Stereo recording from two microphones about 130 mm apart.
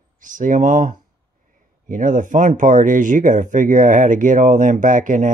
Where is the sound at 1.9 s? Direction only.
90° right.